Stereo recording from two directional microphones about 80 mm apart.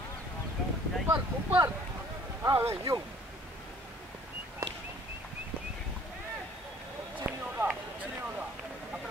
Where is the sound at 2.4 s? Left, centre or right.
Right.